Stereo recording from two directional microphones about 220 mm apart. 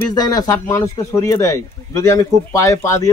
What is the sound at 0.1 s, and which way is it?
Speech, 15° left (ahead or behind).